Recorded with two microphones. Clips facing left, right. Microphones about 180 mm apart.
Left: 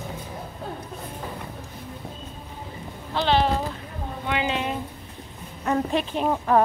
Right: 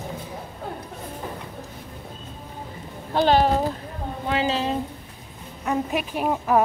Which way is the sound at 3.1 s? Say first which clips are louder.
Right 3 dB; 45° right (ahead or behind).